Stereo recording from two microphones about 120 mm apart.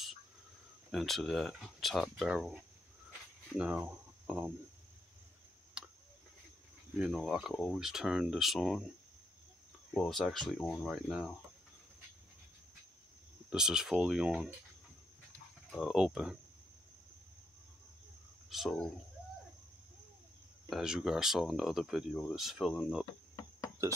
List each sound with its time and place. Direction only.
0.9 s speech: centre (ahead or behind)
3.1 s a sound: 15° right (ahead or behind)
5.8 s a sound: 10° right (ahead or behind)
7.0 s speech: centre (ahead or behind)
9.9 s speech: 5° left (ahead or behind)
13.5 s speech: 5° right (ahead or behind)
15.8 s speech: 5° right (ahead or behind)
18.5 s speech: centre (ahead or behind)
20.7 s speech: 5° right (ahead or behind)
23.0 s cricket: 30° left (ahead or behind)